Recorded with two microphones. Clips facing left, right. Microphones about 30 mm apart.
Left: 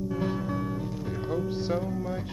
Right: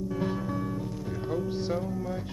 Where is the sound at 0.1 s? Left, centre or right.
Centre.